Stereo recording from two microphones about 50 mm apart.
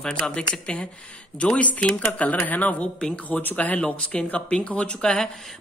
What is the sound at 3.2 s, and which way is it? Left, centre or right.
Speech, left.